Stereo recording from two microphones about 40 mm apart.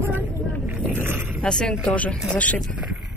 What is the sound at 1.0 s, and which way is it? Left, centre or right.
Boat, right.